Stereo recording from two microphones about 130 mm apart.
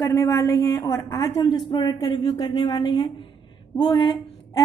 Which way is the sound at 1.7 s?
30° left (ahead or behind).